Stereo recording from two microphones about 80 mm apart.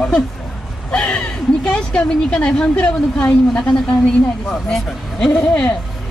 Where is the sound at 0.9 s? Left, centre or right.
Centre.